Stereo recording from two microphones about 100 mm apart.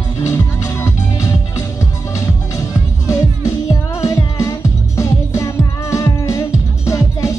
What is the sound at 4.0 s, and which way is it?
Music, 30° left (ahead or behind).